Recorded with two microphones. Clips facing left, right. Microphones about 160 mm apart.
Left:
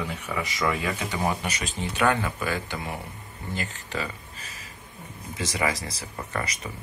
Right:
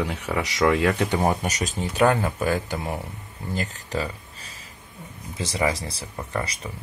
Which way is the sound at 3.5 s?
40° right (ahead or behind).